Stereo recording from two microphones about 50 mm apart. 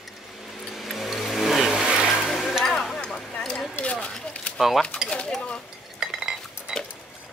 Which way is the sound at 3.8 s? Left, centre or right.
Left.